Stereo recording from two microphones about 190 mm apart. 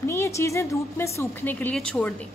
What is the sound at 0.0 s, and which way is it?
A woman's voice, 15° left (ahead or behind).